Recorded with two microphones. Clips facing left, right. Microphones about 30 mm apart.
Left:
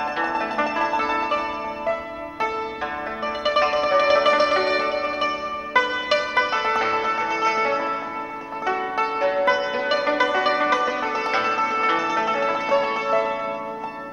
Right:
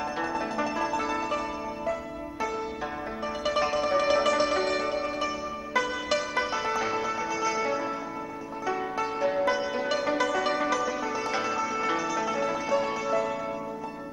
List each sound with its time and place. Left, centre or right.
0.2 s music: left
3.4 s music: left